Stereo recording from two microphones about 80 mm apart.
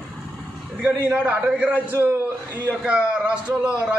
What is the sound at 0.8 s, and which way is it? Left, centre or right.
A man's voice, right.